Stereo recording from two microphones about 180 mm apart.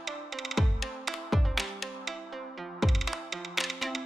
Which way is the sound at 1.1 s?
Centre (ahead or behind).